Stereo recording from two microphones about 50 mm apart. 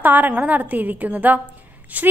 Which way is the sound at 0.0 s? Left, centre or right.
Right.